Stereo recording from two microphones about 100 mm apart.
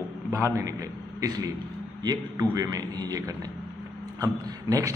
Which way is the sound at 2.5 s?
40° right (ahead or behind).